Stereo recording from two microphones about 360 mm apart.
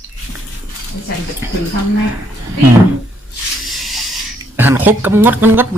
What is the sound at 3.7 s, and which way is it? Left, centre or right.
Speech, centre.